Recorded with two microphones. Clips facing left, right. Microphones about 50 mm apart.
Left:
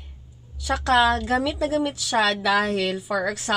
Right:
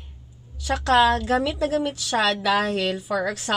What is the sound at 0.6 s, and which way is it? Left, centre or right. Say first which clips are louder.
A woman's voice: right 1 dB; centre.